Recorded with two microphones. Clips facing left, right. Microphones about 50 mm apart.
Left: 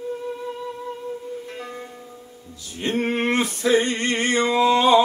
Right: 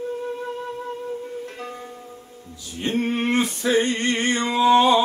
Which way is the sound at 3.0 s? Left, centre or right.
Left.